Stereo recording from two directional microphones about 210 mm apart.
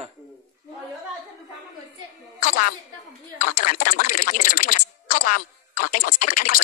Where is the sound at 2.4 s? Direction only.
40° left (ahead or behind).